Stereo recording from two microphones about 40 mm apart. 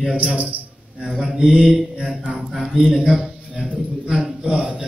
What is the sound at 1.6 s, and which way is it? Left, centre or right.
Speech, centre.